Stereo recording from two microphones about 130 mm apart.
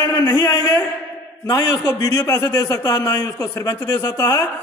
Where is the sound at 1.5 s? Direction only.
30° left (ahead or behind).